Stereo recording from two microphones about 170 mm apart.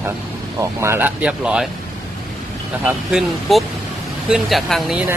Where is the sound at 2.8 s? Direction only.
5° right (ahead or behind).